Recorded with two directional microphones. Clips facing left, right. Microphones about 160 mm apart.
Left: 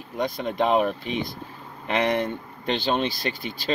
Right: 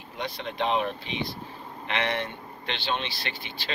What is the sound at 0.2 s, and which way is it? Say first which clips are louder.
Speech: left 6 dB; 45° left (ahead or behind).